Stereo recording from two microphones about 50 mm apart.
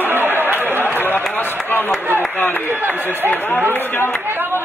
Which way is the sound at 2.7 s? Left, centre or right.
Right.